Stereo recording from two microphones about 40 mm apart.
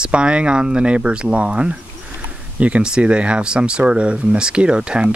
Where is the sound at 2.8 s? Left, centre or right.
Right.